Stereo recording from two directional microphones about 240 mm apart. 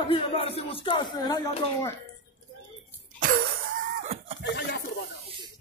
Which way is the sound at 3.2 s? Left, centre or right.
Right.